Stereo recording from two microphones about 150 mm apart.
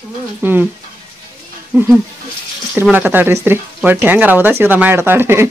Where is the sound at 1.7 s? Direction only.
10° right (ahead or behind).